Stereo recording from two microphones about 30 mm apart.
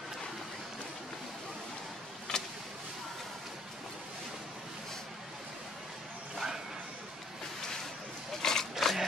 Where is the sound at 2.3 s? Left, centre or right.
Left.